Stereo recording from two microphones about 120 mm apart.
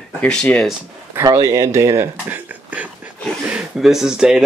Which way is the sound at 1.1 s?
25° right (ahead or behind).